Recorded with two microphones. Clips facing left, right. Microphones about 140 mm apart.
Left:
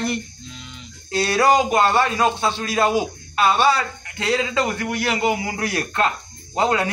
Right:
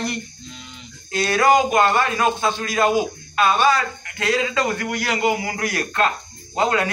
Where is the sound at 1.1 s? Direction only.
30° left (ahead or behind).